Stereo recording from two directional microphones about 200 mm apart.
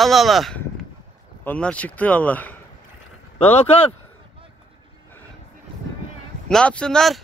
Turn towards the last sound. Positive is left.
turn(degrees=0)  # may be behind; listen again after turning